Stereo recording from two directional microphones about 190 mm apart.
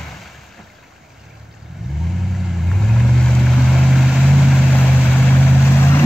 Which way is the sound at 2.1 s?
Centre (ahead or behind).